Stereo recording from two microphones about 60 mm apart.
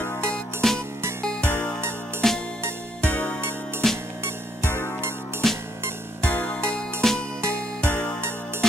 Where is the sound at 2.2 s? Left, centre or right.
Centre.